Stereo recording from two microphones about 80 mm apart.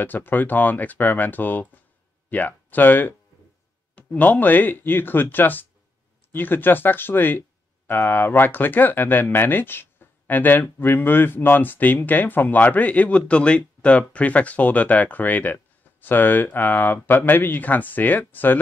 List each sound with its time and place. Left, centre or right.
0.0 s speech: left